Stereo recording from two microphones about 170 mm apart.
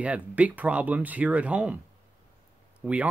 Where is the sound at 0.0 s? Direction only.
10° right (ahead or behind).